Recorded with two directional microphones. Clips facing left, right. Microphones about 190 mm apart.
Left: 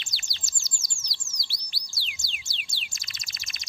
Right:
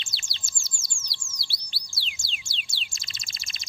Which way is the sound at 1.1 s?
30° right (ahead or behind).